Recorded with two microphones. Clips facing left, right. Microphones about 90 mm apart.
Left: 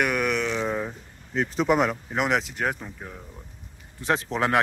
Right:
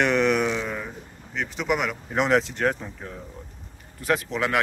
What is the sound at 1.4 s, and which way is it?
Speech, 35° left (ahead or behind).